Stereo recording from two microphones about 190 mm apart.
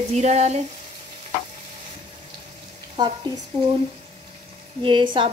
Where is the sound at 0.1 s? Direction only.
35° right (ahead or behind).